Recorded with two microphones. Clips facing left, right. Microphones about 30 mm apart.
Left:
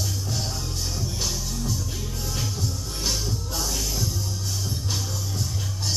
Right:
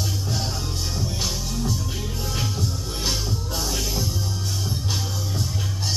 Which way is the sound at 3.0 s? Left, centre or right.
Right.